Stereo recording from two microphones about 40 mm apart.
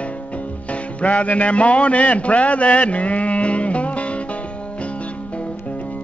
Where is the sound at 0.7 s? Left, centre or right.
Left.